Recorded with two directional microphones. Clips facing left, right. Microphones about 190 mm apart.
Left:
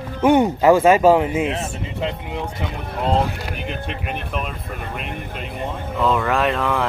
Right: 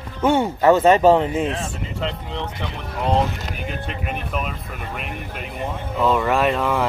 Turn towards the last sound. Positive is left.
turn(degrees=0)  # may be behind; listen again after turning